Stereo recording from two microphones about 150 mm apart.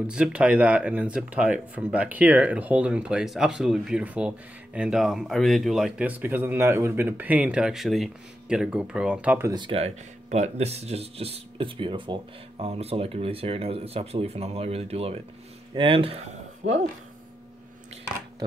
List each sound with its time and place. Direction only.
0.0 s speech: 5° right (ahead or behind)
9.5 s speech: 35° right (ahead or behind); by 16.8 s 50° right (ahead or behind)